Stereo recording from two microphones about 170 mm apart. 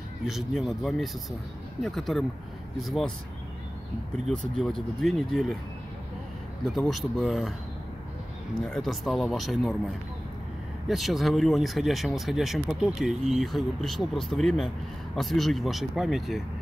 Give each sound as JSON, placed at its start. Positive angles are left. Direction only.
{"t": 0.3, "sound": "speech", "side_deg": 0}
{"t": 4.3, "sound": "speech", "side_deg": 0}
{"t": 6.9, "sound": "speech", "side_deg": 0}
{"t": 8.6, "sound": "speech", "side_deg": 0}
{"t": 10.9, "sound": "speech", "side_deg": 0}